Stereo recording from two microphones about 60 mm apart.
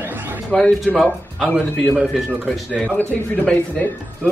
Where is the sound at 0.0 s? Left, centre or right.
Right.